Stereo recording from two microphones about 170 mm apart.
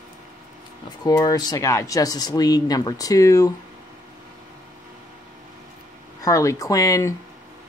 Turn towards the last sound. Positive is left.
turn(degrees=20)  # may be behind; listen again after turning